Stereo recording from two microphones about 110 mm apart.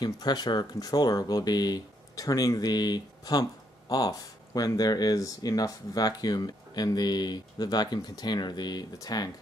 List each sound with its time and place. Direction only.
0.0 s speech: 40° left (ahead or behind)